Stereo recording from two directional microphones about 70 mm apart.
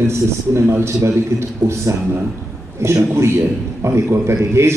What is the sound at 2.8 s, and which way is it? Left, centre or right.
A man's voice, right.